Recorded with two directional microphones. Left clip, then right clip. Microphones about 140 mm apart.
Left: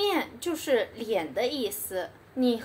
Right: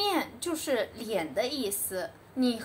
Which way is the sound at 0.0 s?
15° left (ahead or behind).